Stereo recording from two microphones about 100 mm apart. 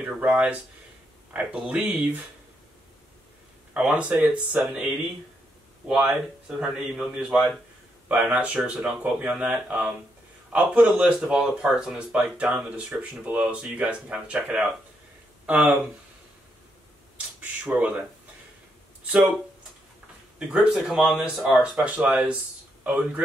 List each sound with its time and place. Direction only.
0.0 s speech: 15° right (ahead or behind)
3.7 s speech: 10° right (ahead or behind)
17.4 s a sound: 15° right (ahead or behind)
20.3 s speech: 10° right (ahead or behind)
21.8 s speech: 10° right (ahead or behind)